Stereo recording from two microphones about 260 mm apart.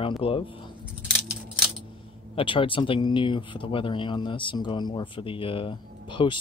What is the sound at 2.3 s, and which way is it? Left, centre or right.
Speech, centre.